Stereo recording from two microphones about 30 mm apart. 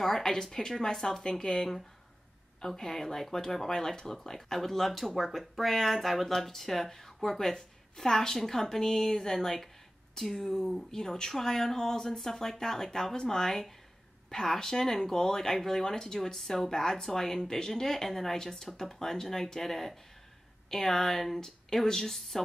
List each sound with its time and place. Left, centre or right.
0.0 s speech: centre
4.2 s speech: centre
13.1 s speech: left
13.4 s speech: centre
21.8 s speech: centre